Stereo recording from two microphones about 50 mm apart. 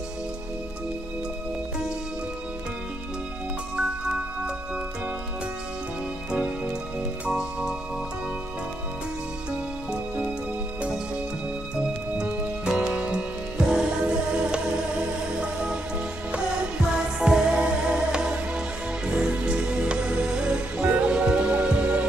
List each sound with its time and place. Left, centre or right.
3.7 s music: centre
6.3 s music: right
11.7 s music: centre
15.4 s music: right
17.3 s music: centre
17.6 s music: right